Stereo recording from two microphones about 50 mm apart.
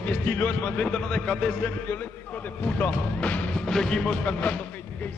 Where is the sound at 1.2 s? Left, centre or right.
Centre.